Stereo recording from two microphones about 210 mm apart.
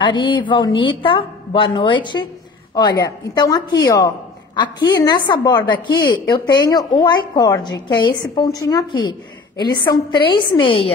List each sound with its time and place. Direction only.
0.0 s a woman's voice: 20° left (ahead or behind)
3.3 s a woman's voice: 20° left (ahead or behind)